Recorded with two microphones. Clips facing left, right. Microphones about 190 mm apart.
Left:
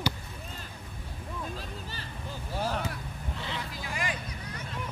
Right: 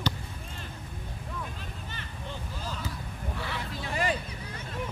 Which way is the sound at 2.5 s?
70° left (ahead or behind).